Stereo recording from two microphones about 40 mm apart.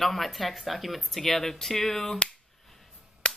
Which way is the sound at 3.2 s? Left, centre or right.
Left.